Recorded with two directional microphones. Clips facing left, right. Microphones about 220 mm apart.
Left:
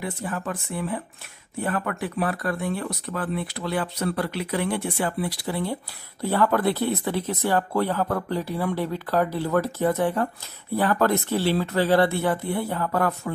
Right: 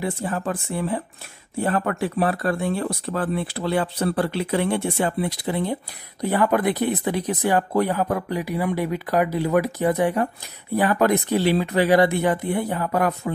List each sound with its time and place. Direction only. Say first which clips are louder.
0.0 s speech: right 4 dB; 30° right (ahead or behind)